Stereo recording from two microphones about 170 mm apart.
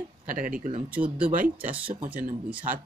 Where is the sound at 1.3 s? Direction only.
50° right (ahead or behind).